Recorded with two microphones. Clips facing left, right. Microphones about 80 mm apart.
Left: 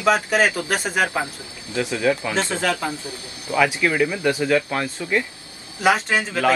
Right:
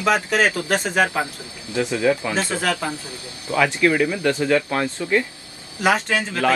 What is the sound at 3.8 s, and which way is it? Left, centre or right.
Speech, centre.